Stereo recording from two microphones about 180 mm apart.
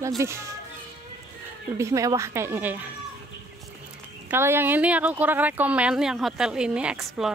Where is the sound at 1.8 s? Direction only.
15° right (ahead or behind).